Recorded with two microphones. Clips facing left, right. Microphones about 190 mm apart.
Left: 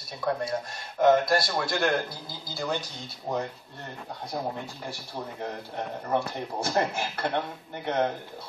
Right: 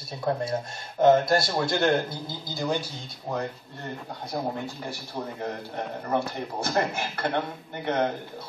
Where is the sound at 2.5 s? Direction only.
15° right (ahead or behind).